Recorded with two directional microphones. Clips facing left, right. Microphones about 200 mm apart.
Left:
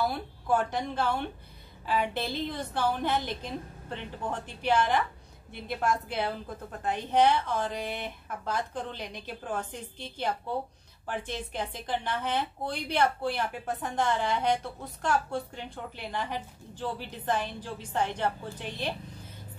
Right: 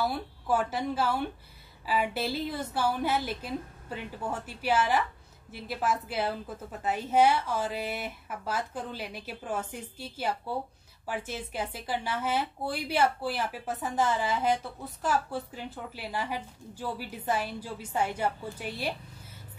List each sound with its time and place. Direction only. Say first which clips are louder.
0.0 s a woman's voice: even; 5° right (ahead or behind)